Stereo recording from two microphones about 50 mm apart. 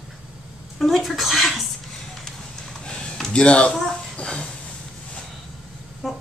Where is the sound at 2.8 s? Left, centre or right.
Centre.